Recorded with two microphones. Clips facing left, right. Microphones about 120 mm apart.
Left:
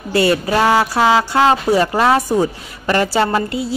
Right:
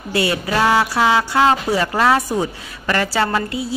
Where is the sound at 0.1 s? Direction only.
40° left (ahead or behind).